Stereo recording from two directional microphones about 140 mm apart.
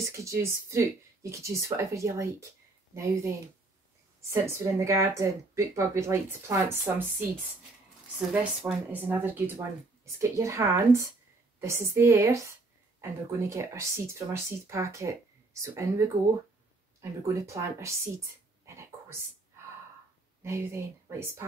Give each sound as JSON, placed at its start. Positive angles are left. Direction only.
{"t": 0.1, "sound": "a woman's voice", "side_deg": -20}
{"t": 20.4, "sound": "speech", "side_deg": -20}